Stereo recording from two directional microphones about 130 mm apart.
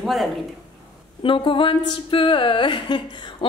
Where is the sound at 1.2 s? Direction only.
40° left (ahead or behind).